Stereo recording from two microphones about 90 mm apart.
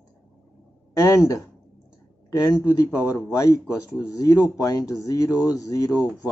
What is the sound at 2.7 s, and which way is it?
Speech, 35° left (ahead or behind).